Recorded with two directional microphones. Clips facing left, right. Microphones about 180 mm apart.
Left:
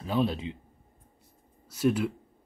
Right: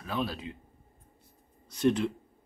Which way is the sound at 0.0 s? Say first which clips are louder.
Left 6 dB; 25° left (ahead or behind).